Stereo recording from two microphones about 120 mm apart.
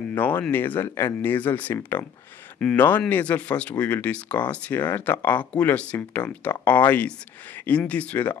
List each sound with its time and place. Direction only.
0.1 s speech: 15° left (ahead or behind)